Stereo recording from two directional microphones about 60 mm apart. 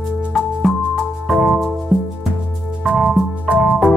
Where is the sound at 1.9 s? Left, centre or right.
Centre.